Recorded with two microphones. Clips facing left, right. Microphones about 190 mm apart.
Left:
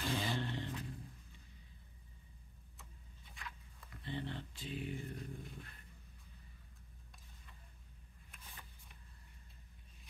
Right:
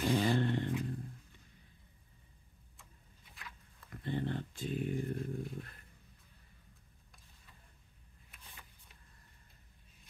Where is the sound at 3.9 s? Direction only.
50° right (ahead or behind).